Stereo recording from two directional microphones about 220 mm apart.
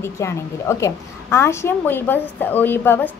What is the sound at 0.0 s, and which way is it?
A woman's voice, 10° left (ahead or behind).